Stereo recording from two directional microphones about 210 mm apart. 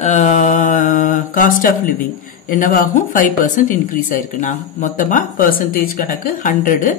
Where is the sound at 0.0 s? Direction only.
35° left (ahead or behind).